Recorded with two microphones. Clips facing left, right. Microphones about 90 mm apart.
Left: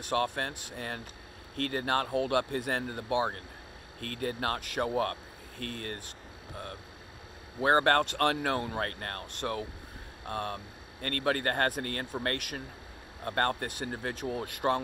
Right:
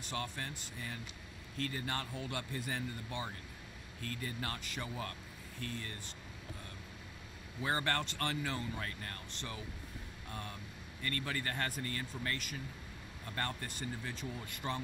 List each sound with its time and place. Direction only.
0.0 s speech: 55° left (ahead or behind)